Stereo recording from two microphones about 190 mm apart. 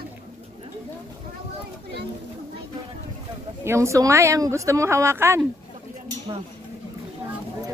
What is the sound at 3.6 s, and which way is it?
Speech, 15° right (ahead or behind).